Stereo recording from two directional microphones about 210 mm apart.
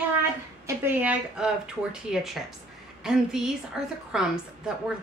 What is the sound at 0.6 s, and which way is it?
A woman's voice, 10° right (ahead or behind).